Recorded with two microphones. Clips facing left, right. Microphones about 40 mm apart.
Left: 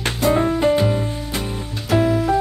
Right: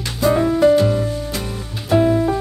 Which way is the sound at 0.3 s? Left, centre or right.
Centre.